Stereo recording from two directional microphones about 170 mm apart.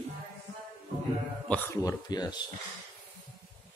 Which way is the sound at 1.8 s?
20° left (ahead or behind).